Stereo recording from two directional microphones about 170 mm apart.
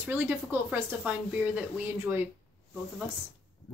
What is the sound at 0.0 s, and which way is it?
Speech, 10° right (ahead or behind).